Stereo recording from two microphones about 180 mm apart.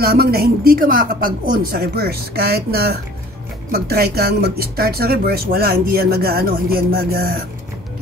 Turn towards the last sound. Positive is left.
turn(degrees=-55)  # may be behind; listen again after turning